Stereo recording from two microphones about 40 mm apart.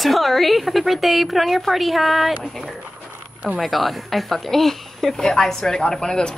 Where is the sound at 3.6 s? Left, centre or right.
Centre; by 6.3 s left.